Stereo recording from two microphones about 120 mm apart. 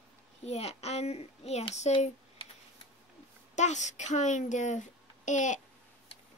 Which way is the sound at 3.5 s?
80° left.